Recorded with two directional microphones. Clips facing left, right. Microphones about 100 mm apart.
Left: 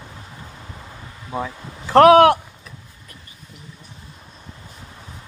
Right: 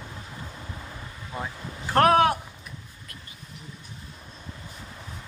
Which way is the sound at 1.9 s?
75° left (ahead or behind).